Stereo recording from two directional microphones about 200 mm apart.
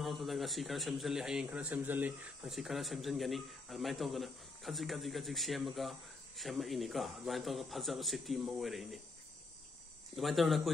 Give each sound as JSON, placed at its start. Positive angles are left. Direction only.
{"t": 0.0, "sound": "a man's voice", "side_deg": 0}
{"t": 10.1, "sound": "a man's voice", "side_deg": 0}